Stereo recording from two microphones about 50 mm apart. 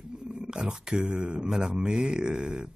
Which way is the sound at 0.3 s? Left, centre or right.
Centre.